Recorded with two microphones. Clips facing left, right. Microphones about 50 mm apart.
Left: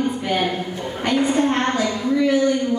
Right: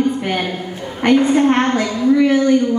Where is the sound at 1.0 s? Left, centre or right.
Right.